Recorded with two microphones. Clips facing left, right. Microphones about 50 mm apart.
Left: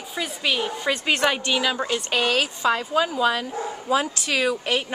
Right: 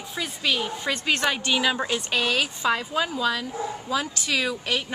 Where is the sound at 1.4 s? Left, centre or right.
Centre.